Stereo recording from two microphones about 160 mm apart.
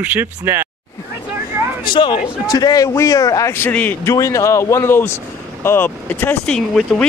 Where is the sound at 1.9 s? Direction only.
30° left (ahead or behind).